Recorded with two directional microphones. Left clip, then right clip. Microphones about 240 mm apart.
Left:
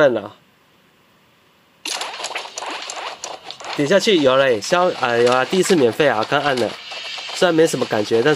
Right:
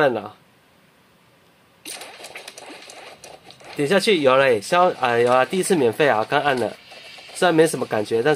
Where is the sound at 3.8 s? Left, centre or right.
Centre.